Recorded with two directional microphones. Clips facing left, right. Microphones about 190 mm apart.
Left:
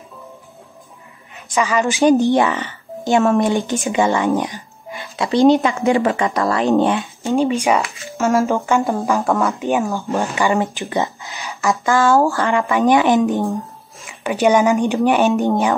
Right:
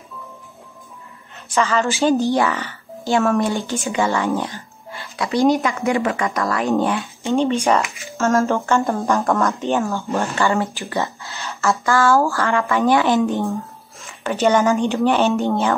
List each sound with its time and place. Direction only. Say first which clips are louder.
1.5 s speech: left 1 dB; 15° left (ahead or behind)
9.0 s speech: left 1 dB; centre (ahead or behind)
9.7 s speech: left 2 dB; 15° left (ahead or behind)